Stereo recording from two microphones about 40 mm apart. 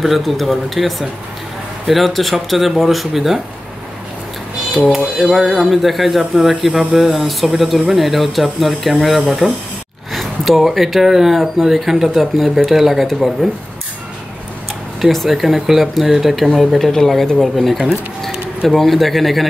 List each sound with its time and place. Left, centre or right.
0.0 s speech: centre
4.7 s speech: centre
9.4 s speech: right
10.1 s speech: centre
15.0 s speech: centre
16.5 s speech: centre
17.6 s speech: centre